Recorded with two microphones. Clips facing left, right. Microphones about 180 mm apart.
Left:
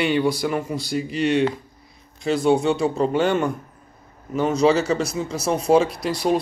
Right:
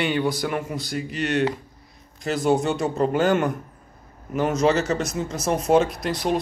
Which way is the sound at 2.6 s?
Centre (ahead or behind).